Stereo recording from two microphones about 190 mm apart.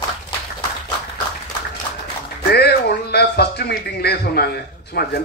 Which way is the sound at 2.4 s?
60° left (ahead or behind).